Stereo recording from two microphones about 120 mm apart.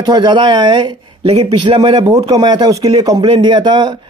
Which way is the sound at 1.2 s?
60° right (ahead or behind).